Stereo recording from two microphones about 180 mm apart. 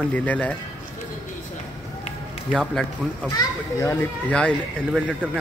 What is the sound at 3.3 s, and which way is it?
Speech, 20° left (ahead or behind).